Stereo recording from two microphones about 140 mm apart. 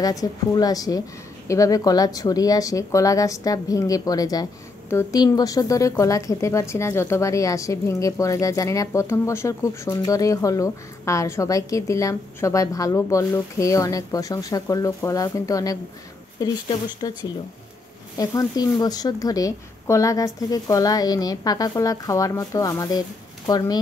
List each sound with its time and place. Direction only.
0.0 s speech: 25° left (ahead or behind)